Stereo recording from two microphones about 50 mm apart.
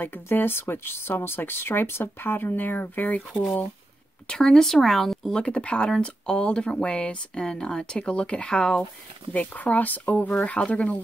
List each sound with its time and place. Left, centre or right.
0.0 s speech: left
4.3 s speech: centre
5.3 s speech: left
9.3 s speech: left